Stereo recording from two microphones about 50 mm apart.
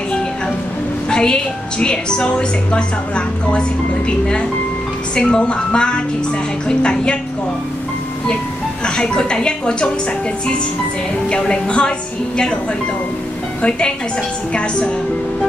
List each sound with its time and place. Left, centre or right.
1.1 s a woman's voice: centre
5.1 s a woman's voice: centre
8.8 s a woman's voice: centre
11.2 s a woman's voice: centre
13.6 s a woman's voice: centre